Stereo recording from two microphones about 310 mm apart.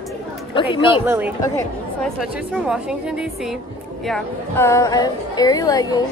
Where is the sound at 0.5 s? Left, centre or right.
Centre.